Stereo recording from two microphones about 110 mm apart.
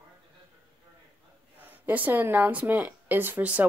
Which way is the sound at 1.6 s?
15° right (ahead or behind).